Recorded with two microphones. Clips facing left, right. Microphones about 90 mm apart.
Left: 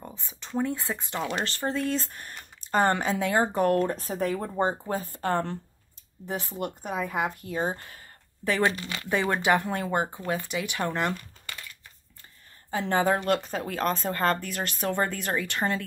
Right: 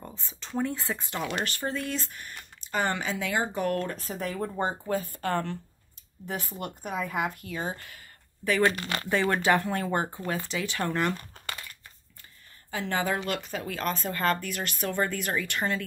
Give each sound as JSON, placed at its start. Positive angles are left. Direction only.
{"t": 0.0, "sound": "a sound", "side_deg": 15}
{"t": 0.6, "sound": "speech", "side_deg": 15}
{"t": 4.6, "sound": "speech", "side_deg": 30}
{"t": 8.7, "sound": "speech", "side_deg": -65}
{"t": 9.1, "sound": "speech", "side_deg": 15}
{"t": 12.7, "sound": "speech", "side_deg": 30}